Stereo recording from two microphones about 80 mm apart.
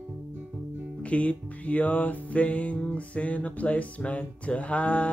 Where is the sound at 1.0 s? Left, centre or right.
Centre.